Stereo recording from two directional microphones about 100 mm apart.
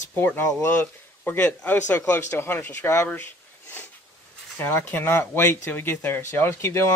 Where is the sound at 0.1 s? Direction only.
25° left (ahead or behind).